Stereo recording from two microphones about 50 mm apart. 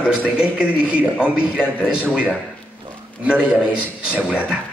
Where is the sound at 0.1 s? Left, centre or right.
Right.